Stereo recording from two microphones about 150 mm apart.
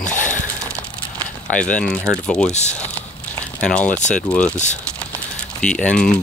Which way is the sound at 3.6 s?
10° left (ahead or behind).